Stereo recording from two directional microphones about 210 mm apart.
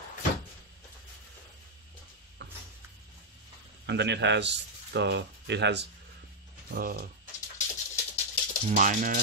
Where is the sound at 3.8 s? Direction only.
55° right (ahead or behind).